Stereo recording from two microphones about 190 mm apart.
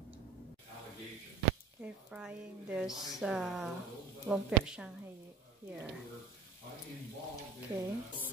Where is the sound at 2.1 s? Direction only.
5° right (ahead or behind).